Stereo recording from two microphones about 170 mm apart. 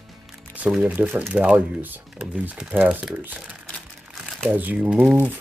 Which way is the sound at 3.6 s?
Centre (ahead or behind).